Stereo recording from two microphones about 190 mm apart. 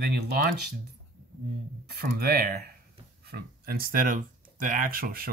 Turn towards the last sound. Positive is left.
turn(degrees=-50)  # may be behind; listen again after turning